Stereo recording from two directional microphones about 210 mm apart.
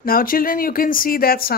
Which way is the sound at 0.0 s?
45° left (ahead or behind).